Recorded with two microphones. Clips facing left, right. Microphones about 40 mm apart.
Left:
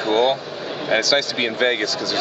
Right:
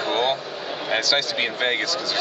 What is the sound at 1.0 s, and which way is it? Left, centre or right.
Speech, right.